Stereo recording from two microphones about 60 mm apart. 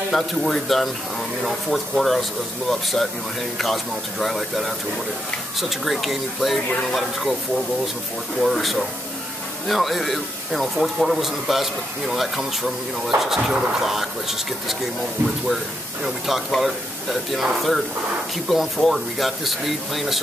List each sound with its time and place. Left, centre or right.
0.1 s speech: centre
8.4 s speech: centre
15.2 s speech: centre